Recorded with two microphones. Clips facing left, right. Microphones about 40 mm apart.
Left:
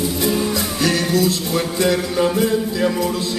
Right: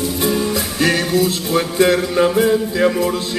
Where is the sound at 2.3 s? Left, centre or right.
Centre.